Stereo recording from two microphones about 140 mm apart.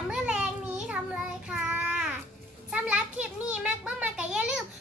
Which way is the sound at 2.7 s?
10° right (ahead or behind).